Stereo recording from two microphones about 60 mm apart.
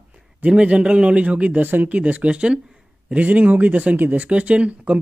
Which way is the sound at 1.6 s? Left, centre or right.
Right.